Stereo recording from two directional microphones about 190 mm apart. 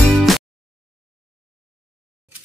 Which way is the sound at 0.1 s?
Centre (ahead or behind).